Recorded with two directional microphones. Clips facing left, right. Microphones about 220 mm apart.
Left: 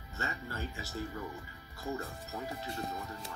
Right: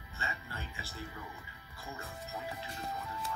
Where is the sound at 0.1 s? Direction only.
45° left (ahead or behind).